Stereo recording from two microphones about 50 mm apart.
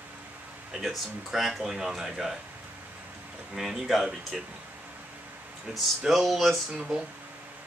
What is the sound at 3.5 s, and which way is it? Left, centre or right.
Speech, centre.